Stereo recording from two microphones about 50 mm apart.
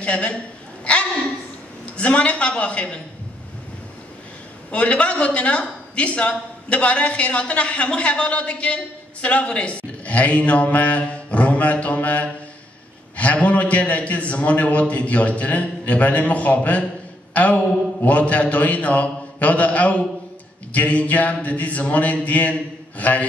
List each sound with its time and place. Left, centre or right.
0.0 s a man's voice: left
0.9 s a sound: left
2.0 s a man's voice: left
4.6 s a man's voice: left
17.3 s a sound: left
18.0 s a man's voice: left